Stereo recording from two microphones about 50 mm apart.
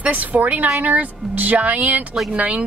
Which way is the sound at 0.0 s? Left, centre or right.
Right.